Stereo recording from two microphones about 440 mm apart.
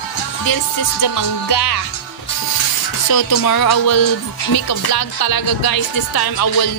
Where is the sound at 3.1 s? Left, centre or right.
Left.